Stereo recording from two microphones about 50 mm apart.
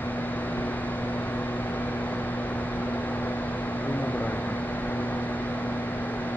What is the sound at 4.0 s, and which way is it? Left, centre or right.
Vehicle, left.